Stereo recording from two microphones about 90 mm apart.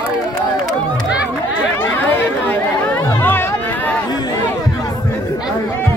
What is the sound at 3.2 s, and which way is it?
Music, 20° left (ahead or behind).